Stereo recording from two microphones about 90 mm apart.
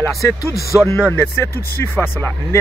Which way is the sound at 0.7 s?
5° left (ahead or behind).